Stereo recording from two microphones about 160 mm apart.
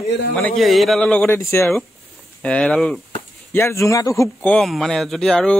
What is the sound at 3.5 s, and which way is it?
Speech, 15° left (ahead or behind).